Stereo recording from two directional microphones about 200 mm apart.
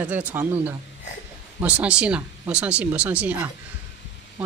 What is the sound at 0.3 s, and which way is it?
Speech, 10° right (ahead or behind).